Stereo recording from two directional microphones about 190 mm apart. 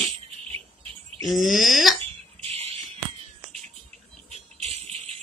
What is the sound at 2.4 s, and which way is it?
Fire alarm, 35° right (ahead or behind).